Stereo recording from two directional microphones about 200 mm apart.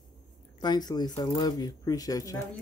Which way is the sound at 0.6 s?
20° left (ahead or behind).